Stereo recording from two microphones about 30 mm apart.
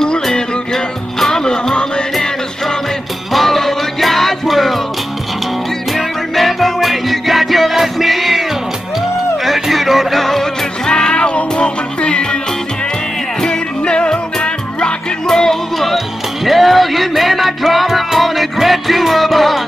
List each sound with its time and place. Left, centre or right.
0.0 s music: centre
3.3 s music: centre
5.9 s music: centre
10.2 s music: centre
10.9 s music: left
13.5 s music: left
15.2 s music: left
16.4 s music: centre